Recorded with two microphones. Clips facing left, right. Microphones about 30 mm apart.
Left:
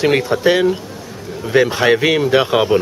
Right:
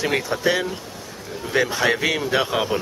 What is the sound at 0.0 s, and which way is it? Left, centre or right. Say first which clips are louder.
Speech: left 7 dB; left.